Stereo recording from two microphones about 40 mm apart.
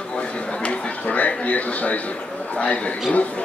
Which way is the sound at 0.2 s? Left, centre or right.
Left.